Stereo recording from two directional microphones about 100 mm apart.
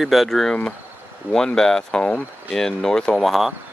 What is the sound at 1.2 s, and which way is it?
Speech, 20° right (ahead or behind).